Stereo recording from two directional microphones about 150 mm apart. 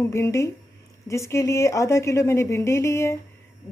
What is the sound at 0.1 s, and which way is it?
Speech, 20° left (ahead or behind).